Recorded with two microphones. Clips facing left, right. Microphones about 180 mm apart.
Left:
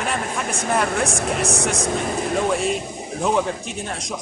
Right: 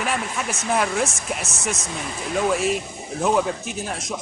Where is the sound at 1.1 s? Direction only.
70° left (ahead or behind).